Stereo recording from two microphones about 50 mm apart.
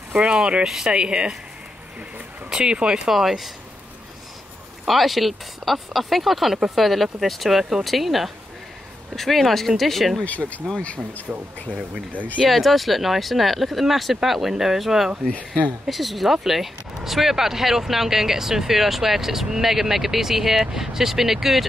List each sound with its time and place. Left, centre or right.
0.1 s speech: centre
0.7 s speech: centre
0.9 s speech: centre
2.5 s speech: centre
3.1 s speech: centre
4.8 s speech: centre
10.2 s speech: left
11.3 s speech: right
12.4 s speech: centre
15.2 s speech: left
15.9 s speech: centre